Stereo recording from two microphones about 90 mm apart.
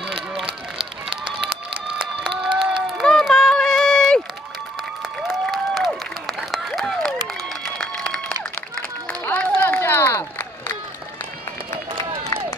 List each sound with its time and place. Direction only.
0.1 s run: 5° right (ahead or behind)
5.3 s applause: centre (ahead or behind)
7.6 s a sound: 10° left (ahead or behind)
8.7 s run: 15° left (ahead or behind)
11.9 s run: 65° right (ahead or behind)